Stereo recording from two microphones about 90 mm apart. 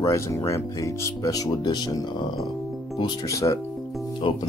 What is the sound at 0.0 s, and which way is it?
Speech, 35° left (ahead or behind).